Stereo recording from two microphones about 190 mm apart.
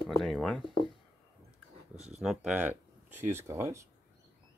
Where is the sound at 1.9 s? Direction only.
35° right (ahead or behind).